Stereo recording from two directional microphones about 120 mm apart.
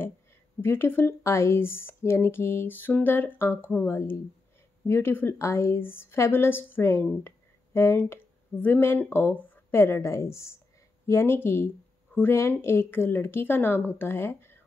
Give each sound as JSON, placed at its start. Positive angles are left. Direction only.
{"t": 0.6, "sound": "a woman's voice", "side_deg": 20}